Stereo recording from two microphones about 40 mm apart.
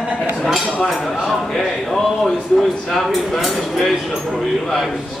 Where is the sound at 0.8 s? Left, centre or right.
Centre.